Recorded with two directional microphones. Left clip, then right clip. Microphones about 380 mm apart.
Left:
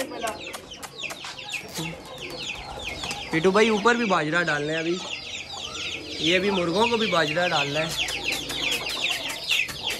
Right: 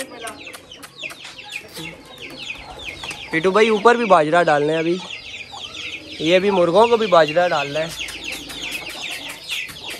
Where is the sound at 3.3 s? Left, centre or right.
Centre.